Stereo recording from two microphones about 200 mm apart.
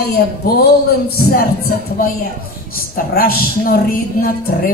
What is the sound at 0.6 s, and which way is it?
Speech, 50° left (ahead or behind).